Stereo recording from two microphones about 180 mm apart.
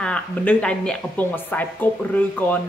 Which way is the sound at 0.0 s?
5° left (ahead or behind).